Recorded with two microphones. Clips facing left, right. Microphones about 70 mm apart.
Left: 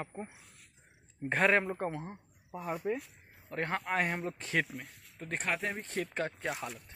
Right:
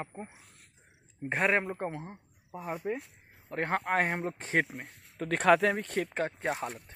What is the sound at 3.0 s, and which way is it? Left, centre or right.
Speech, right.